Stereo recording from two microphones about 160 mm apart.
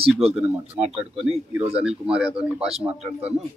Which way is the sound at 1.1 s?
40° right (ahead or behind).